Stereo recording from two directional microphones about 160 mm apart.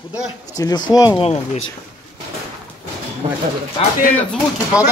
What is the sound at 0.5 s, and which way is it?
Speech, 25° left (ahead or behind).